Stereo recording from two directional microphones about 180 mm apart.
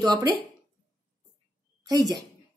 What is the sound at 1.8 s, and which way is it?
Speech, 20° right (ahead or behind).